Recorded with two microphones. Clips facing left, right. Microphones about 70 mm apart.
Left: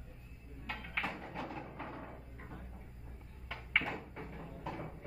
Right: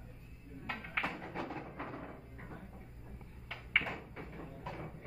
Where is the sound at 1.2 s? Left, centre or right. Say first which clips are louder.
Right 2 dB; right.